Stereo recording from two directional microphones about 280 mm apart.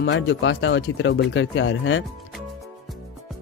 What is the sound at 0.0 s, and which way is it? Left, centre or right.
Speech, left.